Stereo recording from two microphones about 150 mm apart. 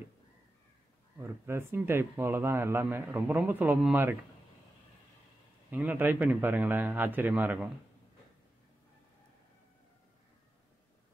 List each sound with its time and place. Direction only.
1.1 s speech: 15° right (ahead or behind)
5.7 s speech: 10° right (ahead or behind)